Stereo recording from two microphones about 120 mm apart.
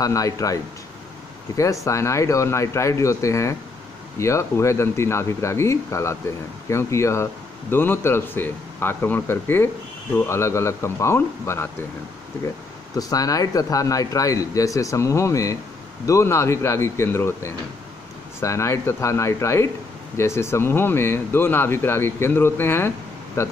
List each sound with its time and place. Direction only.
0.0 s speech: 30° left (ahead or behind)
1.6 s speech: 25° left (ahead or behind)
12.9 s speech: 30° left (ahead or behind)